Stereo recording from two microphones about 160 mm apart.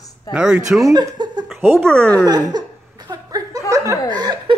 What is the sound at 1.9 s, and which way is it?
Speech, 5° left (ahead or behind).